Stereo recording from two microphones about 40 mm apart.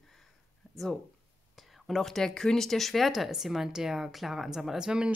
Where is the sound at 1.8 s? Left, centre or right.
Centre.